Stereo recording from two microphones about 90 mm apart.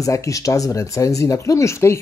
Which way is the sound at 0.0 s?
35° left (ahead or behind).